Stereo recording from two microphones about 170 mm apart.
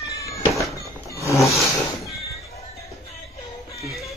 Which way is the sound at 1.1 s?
15° left (ahead or behind).